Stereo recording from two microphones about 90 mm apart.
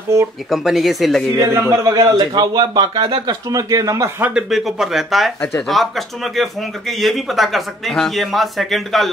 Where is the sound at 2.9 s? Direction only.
80° right.